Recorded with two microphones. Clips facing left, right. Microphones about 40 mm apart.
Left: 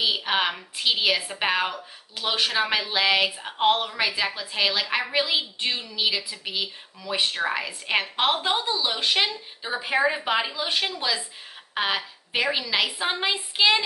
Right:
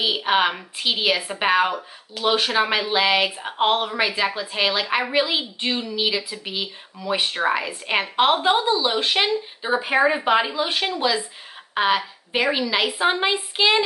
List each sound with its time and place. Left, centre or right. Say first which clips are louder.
0.0 s speech: right 4 dB; centre
7.0 s a woman's voice: right 4 dB; centre